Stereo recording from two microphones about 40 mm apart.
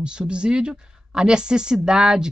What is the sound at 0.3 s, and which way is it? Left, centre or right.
Speech, right.